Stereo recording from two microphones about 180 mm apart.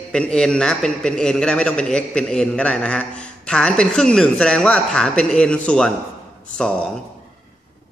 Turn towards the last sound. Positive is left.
turn(degrees=5)  # may be behind; listen again after turning